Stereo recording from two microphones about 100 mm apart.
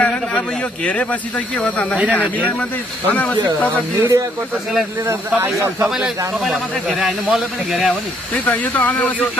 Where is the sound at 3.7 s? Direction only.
20° right (ahead or behind).